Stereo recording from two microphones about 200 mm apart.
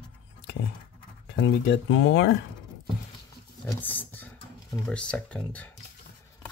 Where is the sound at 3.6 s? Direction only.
10° left (ahead or behind).